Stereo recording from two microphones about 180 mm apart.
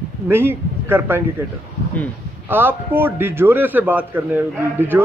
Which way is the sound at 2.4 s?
10° right (ahead or behind).